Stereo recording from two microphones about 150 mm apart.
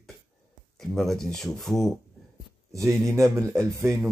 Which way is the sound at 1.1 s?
Centre (ahead or behind).